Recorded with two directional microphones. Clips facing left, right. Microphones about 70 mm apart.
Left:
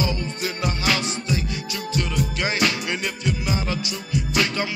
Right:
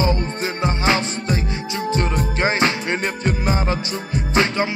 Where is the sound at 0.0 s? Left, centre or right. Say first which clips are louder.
Right 5 dB; right.